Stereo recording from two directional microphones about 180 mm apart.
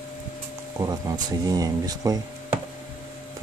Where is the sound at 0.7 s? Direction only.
20° right (ahead or behind).